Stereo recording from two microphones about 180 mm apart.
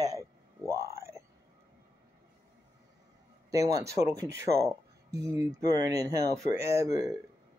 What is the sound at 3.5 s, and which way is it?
Speech, 20° right (ahead or behind).